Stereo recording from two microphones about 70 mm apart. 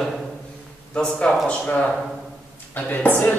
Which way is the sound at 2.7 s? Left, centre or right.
Left.